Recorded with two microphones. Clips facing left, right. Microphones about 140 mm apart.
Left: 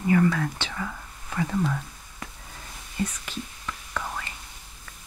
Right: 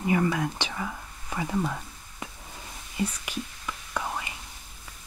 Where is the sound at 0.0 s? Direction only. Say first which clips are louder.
Left 3 dB; 20° right (ahead or behind).